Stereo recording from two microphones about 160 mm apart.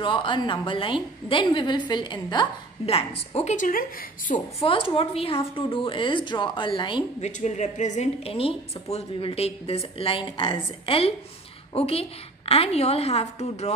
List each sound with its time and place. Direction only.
0.0 s a woman's voice: 30° left (ahead or behind); by 4.4 s 60° left (ahead or behind)
4.6 s a woman's voice: 35° left (ahead or behind)
7.2 s a woman's voice: 45° left (ahead or behind)